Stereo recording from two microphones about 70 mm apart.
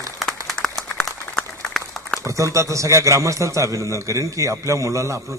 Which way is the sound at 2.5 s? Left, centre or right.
Right.